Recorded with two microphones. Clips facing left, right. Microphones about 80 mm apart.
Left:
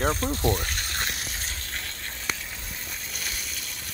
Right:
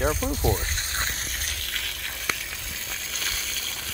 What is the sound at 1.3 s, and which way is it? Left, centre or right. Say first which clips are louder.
Water: right 1 dB; right.